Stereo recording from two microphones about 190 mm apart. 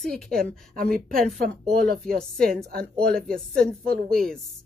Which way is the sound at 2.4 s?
50° right (ahead or behind).